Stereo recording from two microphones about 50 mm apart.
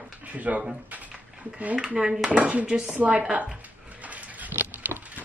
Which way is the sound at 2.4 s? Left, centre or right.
Right.